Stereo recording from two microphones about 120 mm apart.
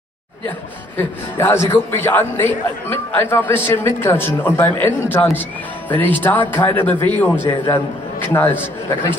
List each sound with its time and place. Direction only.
1.4 s a man's voice: 20° left (ahead or behind)